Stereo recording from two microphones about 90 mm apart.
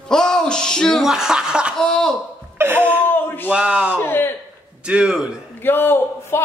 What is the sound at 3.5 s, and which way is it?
Speech, 10° right (ahead or behind).